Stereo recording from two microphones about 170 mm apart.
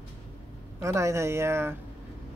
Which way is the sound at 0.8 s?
15° right (ahead or behind).